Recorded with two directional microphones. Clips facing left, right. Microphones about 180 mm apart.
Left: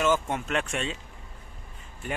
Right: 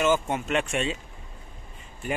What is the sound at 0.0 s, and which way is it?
Speech, 5° right (ahead or behind).